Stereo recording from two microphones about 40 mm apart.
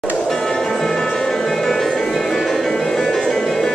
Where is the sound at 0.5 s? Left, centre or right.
Centre.